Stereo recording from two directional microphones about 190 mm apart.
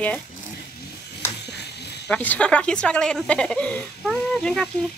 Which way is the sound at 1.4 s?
60° left (ahead or behind).